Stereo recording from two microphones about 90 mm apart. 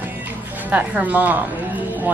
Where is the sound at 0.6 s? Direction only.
15° right (ahead or behind).